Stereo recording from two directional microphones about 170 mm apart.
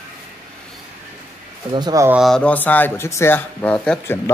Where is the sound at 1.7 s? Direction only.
20° right (ahead or behind).